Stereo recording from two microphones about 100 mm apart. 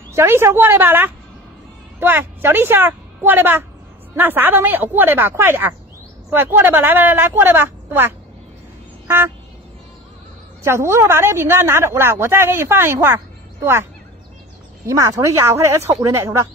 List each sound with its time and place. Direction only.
0.1 s a woman's voice: 25° right (ahead or behind)
9.0 s vehicle: 25° right (ahead or behind)
10.6 s a woman's voice: 25° right (ahead or behind)
14.9 s a woman's voice: 30° right (ahead or behind)